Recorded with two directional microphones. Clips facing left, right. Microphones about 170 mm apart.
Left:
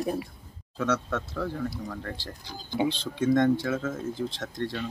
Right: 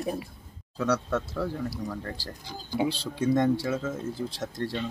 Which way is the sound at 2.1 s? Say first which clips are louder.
Right 1 dB; 35° right (ahead or behind).